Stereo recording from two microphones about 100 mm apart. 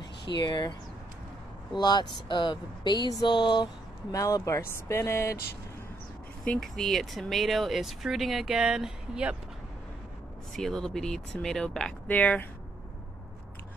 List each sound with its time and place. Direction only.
0.0 s speech: 45° left (ahead or behind)
1.8 s speech: 45° left (ahead or behind)
4.1 s speech: 35° left (ahead or behind)
6.4 s speech: 5° left (ahead or behind)
10.5 s speech: 5° left (ahead or behind)